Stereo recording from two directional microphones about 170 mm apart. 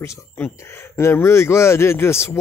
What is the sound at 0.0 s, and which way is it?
Speech, 15° left (ahead or behind).